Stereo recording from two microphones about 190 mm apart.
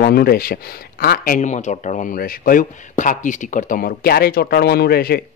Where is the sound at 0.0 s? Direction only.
55° left (ahead or behind).